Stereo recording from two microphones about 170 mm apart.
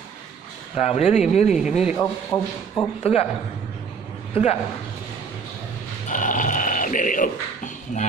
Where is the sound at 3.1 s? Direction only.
35° left (ahead or behind).